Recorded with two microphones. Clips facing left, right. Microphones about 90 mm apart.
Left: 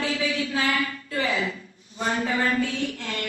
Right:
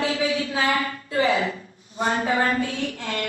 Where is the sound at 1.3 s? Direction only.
35° right (ahead or behind).